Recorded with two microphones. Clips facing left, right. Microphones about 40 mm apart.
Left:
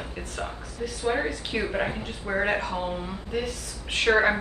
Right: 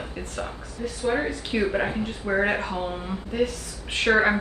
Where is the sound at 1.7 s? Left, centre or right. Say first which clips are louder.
Right 3 dB; centre.